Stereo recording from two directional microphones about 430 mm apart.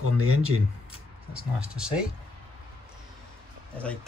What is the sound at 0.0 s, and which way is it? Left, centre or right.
Speech, right.